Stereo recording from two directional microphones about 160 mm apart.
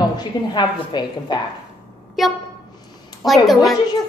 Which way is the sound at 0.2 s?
25° left (ahead or behind).